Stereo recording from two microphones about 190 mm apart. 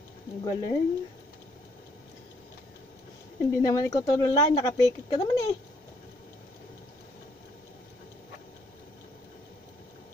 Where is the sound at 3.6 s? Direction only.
20° left (ahead or behind).